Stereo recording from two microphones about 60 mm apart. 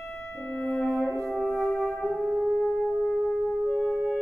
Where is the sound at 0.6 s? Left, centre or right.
Left.